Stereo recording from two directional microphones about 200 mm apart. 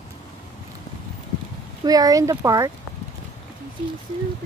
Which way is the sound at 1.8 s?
20° right (ahead or behind).